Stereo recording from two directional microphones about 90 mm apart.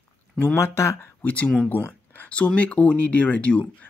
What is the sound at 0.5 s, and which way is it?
Speech, 35° left (ahead or behind).